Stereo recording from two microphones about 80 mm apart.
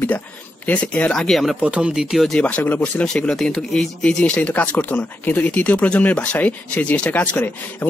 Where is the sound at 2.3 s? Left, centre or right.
Centre.